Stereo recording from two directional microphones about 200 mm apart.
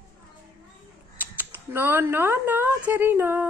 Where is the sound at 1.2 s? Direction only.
10° right (ahead or behind).